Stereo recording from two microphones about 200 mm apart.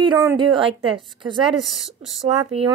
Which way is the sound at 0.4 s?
25° right (ahead or behind).